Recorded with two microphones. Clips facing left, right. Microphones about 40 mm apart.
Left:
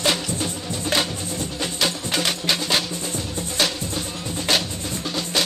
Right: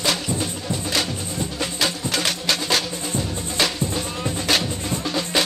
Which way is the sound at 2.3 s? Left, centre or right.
Centre.